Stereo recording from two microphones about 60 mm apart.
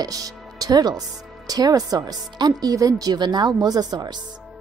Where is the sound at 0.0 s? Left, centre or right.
Right.